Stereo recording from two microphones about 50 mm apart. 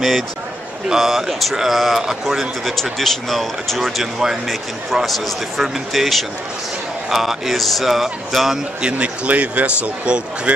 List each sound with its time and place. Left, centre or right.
0.8 s speech: centre
8.8 s speech: right